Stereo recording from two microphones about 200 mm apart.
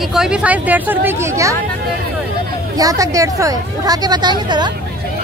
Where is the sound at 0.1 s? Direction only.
5° right (ahead or behind).